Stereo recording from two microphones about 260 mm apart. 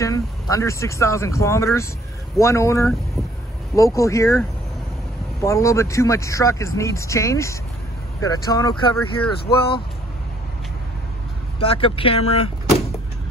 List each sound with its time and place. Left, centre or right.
0.0 s speech: centre
11.6 s speech: left